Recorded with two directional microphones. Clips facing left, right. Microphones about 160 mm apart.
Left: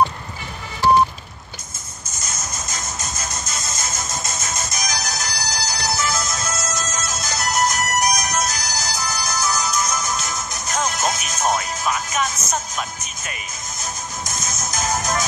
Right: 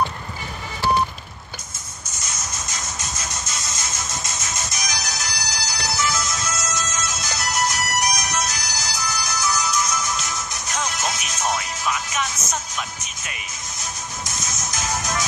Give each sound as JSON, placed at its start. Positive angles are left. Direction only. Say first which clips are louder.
{"t": 2.5, "sound": "music", "louder": "left 2 dB", "side_deg": 50}
{"t": 14.4, "sound": "music", "louder": "left 4 dB", "side_deg": 50}